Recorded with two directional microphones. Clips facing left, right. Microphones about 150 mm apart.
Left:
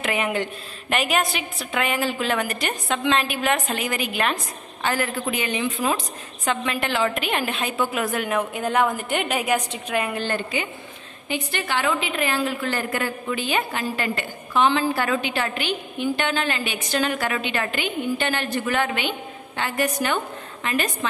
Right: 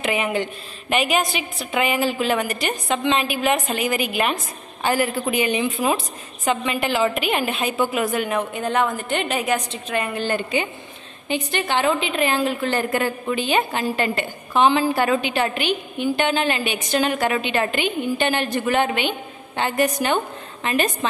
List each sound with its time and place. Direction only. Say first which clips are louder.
0.0 s a woman's voice: right 2 dB; centre (ahead or behind)
10.5 s a woman's voice: right 4 dB; 25° right (ahead or behind)